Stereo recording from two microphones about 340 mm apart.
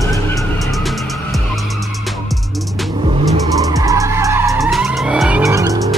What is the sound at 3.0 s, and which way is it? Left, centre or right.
Vehicle, centre.